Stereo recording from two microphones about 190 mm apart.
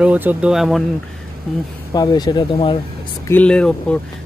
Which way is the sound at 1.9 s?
20° left (ahead or behind).